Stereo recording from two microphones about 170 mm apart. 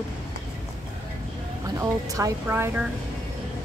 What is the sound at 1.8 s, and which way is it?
Speech, 20° right (ahead or behind).